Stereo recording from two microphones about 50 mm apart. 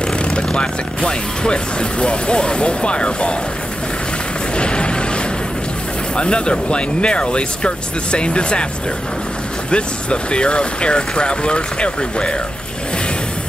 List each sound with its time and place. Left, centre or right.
0.2 s speech: centre
4.6 s a sound: centre
6.1 s speech: centre
9.7 s speech: left